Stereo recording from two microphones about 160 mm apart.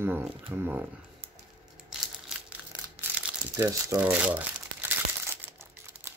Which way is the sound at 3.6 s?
15° right (ahead or behind).